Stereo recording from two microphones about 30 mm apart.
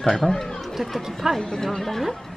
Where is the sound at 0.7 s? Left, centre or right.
Centre.